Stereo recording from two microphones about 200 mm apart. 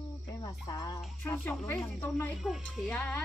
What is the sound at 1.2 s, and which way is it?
Speech, 10° left (ahead or behind).